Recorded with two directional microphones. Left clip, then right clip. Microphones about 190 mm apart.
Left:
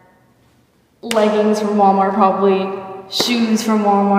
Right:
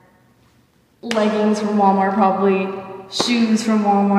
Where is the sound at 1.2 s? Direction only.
15° right (ahead or behind).